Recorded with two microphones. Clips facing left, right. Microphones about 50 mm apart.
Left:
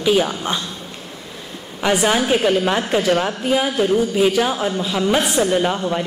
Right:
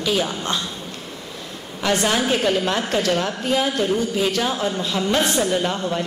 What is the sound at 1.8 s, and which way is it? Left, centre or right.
A woman's voice, centre.